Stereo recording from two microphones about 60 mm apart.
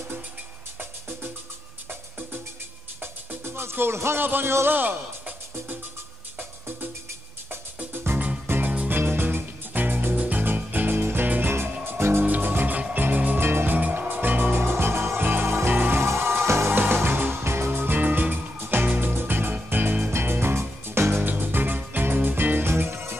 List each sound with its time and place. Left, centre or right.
3.0 s speech: right
7.9 s music: right
8.5 s music: right
11.8 s music: right
13.5 s music: right
13.7 s music: right
14.6 s music: right
15.7 s music: right
16.0 s music: right
16.7 s music: right